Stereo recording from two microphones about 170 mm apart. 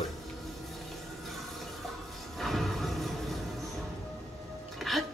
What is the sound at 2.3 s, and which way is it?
Music, centre (ahead or behind).